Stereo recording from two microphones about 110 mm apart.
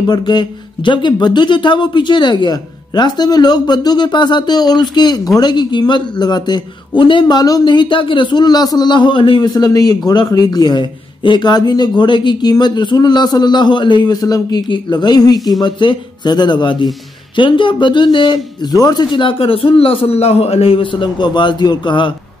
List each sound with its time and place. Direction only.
0.1 s a man's voice: 40° left (ahead or behind)